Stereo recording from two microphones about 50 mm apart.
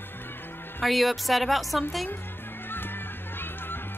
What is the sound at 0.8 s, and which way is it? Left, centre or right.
A woman's voice, centre.